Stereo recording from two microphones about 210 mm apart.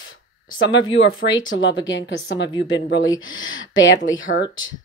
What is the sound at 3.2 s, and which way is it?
Speech, 70° left (ahead or behind).